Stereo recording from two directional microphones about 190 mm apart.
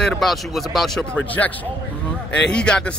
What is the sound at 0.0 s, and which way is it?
Speech, centre (ahead or behind).